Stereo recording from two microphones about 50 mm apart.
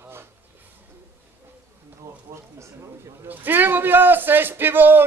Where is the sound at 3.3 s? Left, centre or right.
Right.